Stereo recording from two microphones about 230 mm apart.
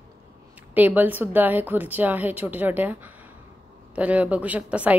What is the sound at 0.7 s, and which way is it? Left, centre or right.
A woman's voice, centre.